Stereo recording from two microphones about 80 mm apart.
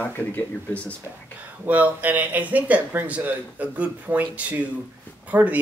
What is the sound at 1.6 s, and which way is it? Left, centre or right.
Speech, right.